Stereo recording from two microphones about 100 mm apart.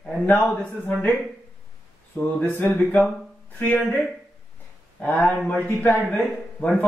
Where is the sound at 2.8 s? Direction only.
10° left (ahead or behind).